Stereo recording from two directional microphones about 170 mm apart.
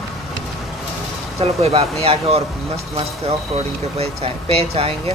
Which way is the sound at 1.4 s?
35° right (ahead or behind).